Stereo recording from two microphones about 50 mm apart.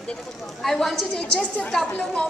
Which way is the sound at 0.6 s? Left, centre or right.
Centre.